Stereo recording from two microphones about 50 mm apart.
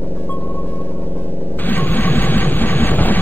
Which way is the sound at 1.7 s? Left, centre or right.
Left.